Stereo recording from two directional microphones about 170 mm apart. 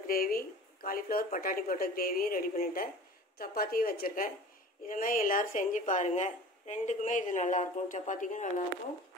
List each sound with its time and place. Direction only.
0.0 s a woman's voice: 60° left (ahead or behind)